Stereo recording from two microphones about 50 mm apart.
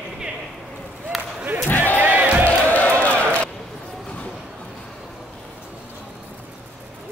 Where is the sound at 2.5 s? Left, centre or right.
Left.